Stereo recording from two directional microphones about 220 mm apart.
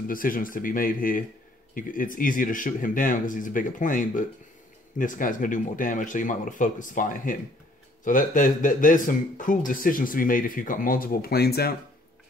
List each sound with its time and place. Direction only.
0.1 s speech: 40° left (ahead or behind)